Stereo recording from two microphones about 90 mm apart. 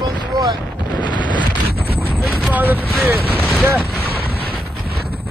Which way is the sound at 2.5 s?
20° right (ahead or behind).